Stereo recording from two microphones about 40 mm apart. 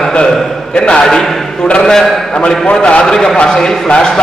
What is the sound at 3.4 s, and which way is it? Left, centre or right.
Speech, left.